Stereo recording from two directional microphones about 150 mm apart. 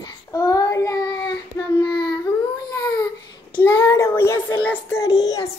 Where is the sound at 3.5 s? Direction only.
15° left (ahead or behind).